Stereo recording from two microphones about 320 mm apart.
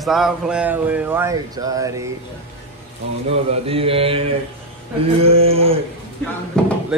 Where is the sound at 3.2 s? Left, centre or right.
Centre.